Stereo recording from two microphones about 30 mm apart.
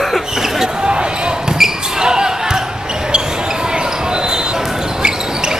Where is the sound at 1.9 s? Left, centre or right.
Right.